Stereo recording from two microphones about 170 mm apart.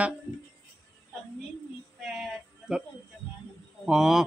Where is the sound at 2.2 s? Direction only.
5° right (ahead or behind).